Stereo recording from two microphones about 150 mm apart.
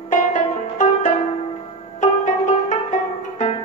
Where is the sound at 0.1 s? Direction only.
55° left (ahead or behind).